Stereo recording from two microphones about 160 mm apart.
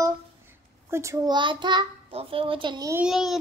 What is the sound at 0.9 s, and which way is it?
A child's voice, 15° right (ahead or behind).